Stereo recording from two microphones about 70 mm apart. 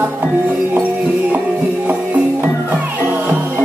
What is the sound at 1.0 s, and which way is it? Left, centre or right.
Music, right.